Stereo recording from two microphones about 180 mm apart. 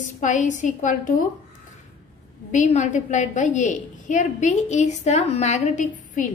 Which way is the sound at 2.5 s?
40° left (ahead or behind).